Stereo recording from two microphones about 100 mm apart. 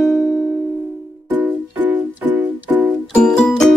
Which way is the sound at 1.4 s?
15° right (ahead or behind).